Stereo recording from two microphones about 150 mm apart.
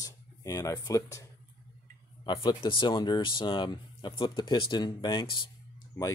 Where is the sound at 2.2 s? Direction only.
30° left (ahead or behind).